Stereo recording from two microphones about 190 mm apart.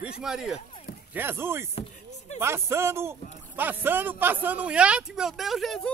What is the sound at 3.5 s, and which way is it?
Speech, 10° right (ahead or behind).